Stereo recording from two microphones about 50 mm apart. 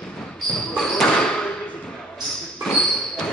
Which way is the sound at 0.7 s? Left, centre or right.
Centre.